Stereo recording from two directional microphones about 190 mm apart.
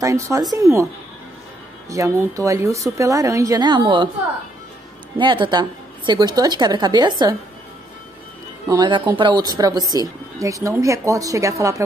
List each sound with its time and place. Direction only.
0.0 s speech: 15° right (ahead or behind)
1.9 s speech: 15° right (ahead or behind)
5.2 s a woman's voice: 25° right (ahead or behind)
8.6 s a woman's voice: 20° right (ahead or behind)